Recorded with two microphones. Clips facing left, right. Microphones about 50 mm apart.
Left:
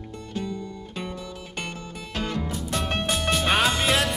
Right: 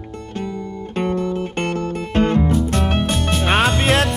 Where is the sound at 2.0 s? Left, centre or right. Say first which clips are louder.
Right 12 dB; right.